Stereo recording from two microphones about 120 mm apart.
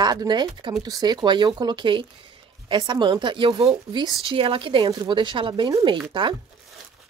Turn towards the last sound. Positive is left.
turn(degrees=-40)  # may be behind; listen again after turning